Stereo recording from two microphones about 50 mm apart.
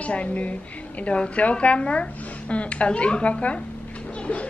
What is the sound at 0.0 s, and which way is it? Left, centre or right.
A woman's voice, left.